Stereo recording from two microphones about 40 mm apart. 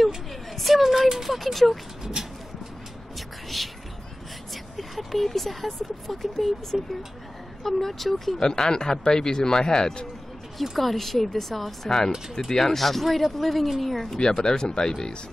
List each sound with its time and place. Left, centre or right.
0.3 s a woman's voice: centre
3.2 s a sound: centre
4.7 s speech: centre
8.4 s speech: centre
10.6 s speech: centre
12.4 s speech: centre
14.1 s speech: centre